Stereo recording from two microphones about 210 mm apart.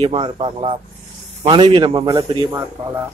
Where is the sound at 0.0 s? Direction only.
25° right (ahead or behind).